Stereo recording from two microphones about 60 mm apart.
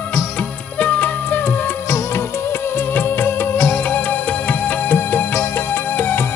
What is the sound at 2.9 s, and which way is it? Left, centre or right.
Music, left.